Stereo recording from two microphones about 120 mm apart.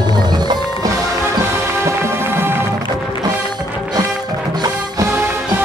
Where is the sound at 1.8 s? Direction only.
20° right (ahead or behind).